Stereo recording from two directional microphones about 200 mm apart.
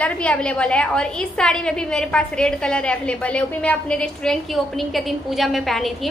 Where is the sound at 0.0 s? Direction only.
5° left (ahead or behind).